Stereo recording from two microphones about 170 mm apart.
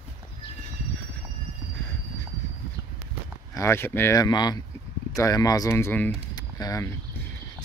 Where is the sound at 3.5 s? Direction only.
15° left (ahead or behind).